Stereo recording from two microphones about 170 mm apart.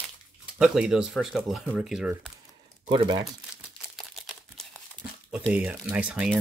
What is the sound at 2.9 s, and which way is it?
Speech, 25° right (ahead or behind).